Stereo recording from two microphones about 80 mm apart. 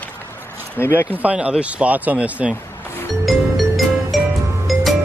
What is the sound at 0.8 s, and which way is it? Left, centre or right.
Speech, left.